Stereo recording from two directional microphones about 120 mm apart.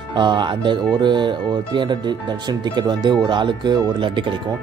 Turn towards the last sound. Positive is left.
turn(degrees=-45)  # may be behind; listen again after turning